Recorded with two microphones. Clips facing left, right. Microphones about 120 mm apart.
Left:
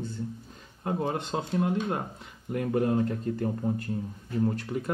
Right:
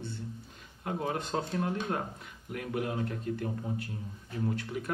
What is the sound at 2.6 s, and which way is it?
Speech, 35° left (ahead or behind).